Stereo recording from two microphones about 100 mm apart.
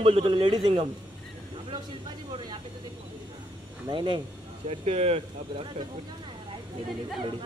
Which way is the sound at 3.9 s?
50° right (ahead or behind).